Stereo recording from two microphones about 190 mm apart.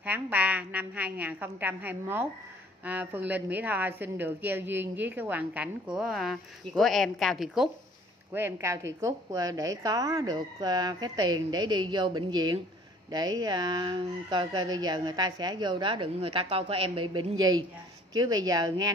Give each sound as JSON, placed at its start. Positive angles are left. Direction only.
{"t": 0.0, "sound": "a woman's voice", "side_deg": -10}